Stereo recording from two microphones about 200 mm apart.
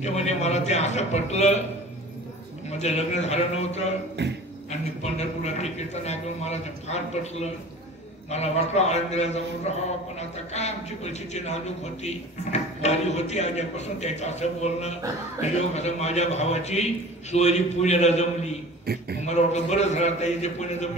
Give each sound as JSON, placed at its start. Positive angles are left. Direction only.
{"t": 0.0, "sound": "a man's voice", "side_deg": 35}
{"t": 2.8, "sound": "a man's voice", "side_deg": 35}
{"t": 4.2, "sound": "speech", "side_deg": -60}
{"t": 4.6, "sound": "a man's voice", "side_deg": 35}
{"t": 18.9, "sound": "speech", "side_deg": -50}
{"t": 19.2, "sound": "a man's voice", "side_deg": 35}